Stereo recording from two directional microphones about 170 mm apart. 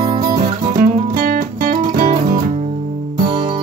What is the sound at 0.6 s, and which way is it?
Music, 60° right (ahead or behind).